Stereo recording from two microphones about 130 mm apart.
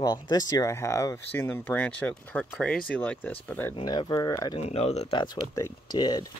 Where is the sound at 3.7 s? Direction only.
40° left (ahead or behind).